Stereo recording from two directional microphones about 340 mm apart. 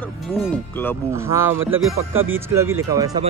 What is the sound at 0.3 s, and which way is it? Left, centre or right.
Speech, centre.